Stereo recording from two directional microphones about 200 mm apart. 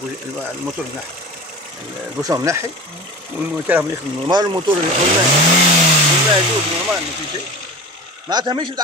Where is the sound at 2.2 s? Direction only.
15° right (ahead or behind).